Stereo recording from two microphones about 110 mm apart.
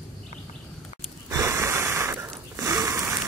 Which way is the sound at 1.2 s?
30° right (ahead or behind).